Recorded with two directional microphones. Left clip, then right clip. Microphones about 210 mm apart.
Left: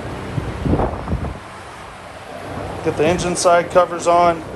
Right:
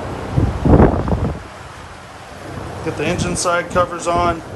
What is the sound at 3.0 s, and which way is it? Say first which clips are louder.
Speech: left 4 dB; 10° right (ahead or behind).